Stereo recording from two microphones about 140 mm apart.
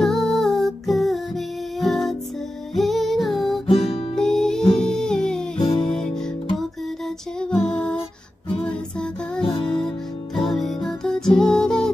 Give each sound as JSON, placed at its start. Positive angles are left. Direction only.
{"t": 0.0, "sound": "music", "side_deg": 0}
{"t": 3.6, "sound": "guitar", "side_deg": 45}
{"t": 4.1, "sound": "music", "side_deg": 5}
{"t": 10.3, "sound": "music", "side_deg": 5}